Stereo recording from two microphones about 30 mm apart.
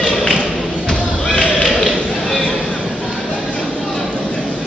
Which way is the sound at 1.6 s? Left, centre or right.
Centre.